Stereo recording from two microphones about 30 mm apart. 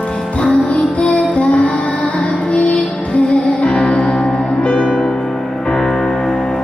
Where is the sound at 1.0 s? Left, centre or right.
Left.